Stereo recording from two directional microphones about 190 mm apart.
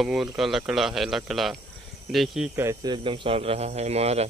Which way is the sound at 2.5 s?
15° right (ahead or behind).